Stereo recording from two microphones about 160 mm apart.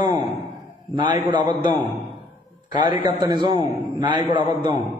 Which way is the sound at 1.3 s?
30° right (ahead or behind).